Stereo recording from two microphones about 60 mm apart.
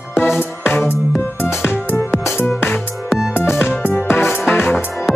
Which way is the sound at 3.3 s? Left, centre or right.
Left.